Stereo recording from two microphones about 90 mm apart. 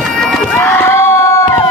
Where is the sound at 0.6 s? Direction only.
25° left (ahead or behind).